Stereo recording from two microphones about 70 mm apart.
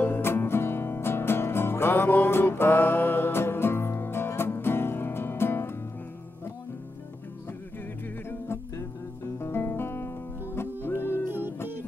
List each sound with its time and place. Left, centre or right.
0.0 s music: left
8.7 s music: left
11.2 s music: right